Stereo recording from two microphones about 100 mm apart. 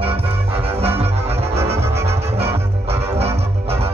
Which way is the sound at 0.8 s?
85° right.